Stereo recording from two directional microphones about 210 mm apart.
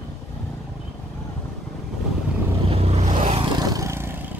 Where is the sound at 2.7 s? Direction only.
30° right (ahead or behind); by 4.3 s 10° right (ahead or behind).